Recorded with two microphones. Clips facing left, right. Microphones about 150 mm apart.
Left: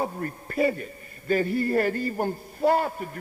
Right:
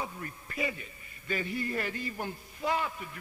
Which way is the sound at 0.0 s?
50° left (ahead or behind).